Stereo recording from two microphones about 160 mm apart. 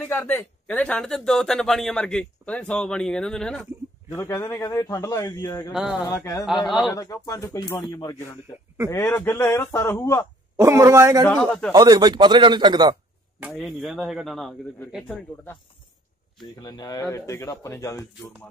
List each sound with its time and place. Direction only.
0.1 s speech: 10° left (ahead or behind)
4.1 s a man's voice: 20° left (ahead or behind)
5.7 s speech: 5° right (ahead or behind)
6.0 s a man's voice: 20° left (ahead or behind)
10.5 s a man's voice: 20° right (ahead or behind)
11.2 s speech: 5° left (ahead or behind)
11.7 s a man's voice: 25° right (ahead or behind)
13.6 s speech: centre (ahead or behind)
16.6 s speech: 25° left (ahead or behind)